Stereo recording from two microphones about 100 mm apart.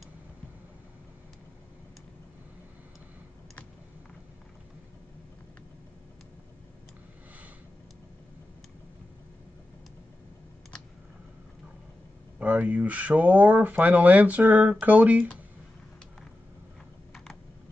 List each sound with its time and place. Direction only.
12.4 s speech: 15° right (ahead or behind)